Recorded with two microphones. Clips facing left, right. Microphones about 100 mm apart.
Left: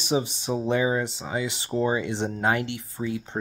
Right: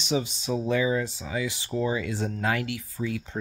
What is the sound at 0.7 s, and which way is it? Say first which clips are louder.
Speech: left 1 dB; 30° left (ahead or behind).